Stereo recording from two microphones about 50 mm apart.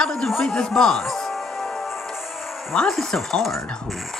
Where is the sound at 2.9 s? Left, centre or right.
Centre.